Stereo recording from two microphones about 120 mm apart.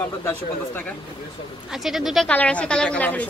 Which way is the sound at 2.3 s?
10° left (ahead or behind).